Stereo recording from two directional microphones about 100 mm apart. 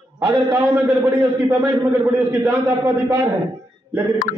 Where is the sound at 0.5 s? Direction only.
20° right (ahead or behind).